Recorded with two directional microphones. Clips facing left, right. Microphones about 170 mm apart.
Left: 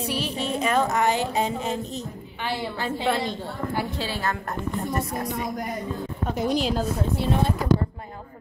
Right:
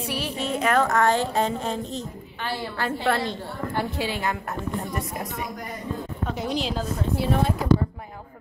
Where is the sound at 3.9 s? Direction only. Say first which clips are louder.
Right 1 dB; 15° right (ahead or behind).